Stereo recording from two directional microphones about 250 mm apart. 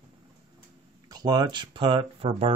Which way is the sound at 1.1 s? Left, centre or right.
Centre.